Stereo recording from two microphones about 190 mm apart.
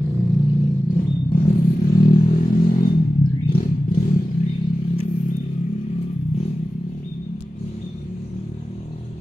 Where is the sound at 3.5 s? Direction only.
50° left (ahead or behind).